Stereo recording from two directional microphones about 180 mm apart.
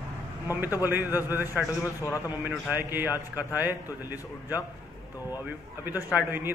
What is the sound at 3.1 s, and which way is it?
Speech, 20° left (ahead or behind).